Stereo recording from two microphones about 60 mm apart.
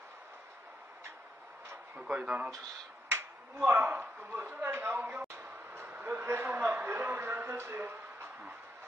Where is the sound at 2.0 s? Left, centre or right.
Centre.